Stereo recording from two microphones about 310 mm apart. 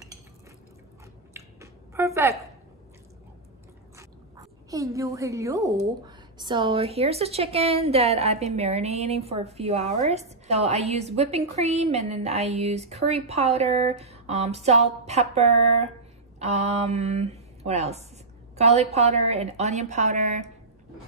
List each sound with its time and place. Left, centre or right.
1.3 s a sound: centre
3.9 s chewing: centre
6.0 s a woman's voice: centre